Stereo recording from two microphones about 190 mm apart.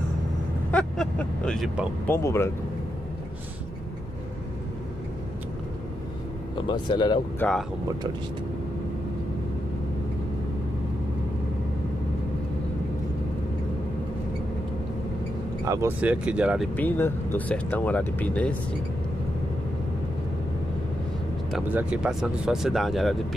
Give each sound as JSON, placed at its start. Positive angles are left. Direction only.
{"t": 0.7, "sound": "vehicle", "side_deg": 5}
{"t": 2.1, "sound": "speech", "side_deg": 15}
{"t": 6.7, "sound": "speech", "side_deg": 25}
{"t": 7.3, "sound": "speech", "side_deg": 5}
{"t": 15.6, "sound": "speech", "side_deg": -15}
{"t": 16.7, "sound": "speech", "side_deg": 10}
{"t": 21.5, "sound": "speech", "side_deg": -5}